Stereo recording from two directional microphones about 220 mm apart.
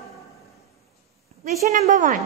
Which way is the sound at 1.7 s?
35° right (ahead or behind).